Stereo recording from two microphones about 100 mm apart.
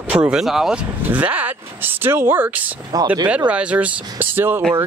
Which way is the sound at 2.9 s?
35° right (ahead or behind).